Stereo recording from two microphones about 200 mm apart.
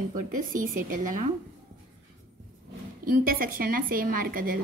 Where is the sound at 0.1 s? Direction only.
45° right (ahead or behind).